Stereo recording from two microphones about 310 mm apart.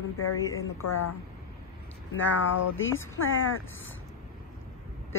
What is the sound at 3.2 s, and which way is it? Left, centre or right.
Speech, left.